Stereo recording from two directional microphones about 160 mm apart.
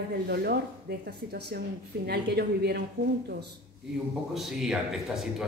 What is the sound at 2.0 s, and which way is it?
Speech, 90° right.